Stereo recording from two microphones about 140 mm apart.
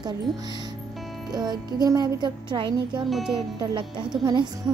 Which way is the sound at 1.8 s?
25° right (ahead or behind).